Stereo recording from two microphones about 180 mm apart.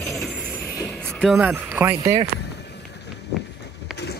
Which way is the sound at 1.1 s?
Centre (ahead or behind).